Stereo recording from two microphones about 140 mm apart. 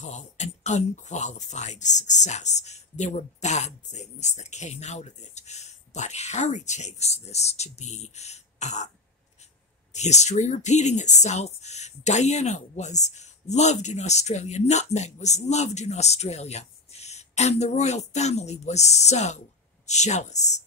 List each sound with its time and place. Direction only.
0.0 s speech: 55° left (ahead or behind)
9.9 s speech: 55° left (ahead or behind)